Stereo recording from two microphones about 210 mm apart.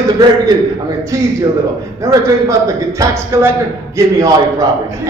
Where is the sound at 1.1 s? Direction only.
15° right (ahead or behind).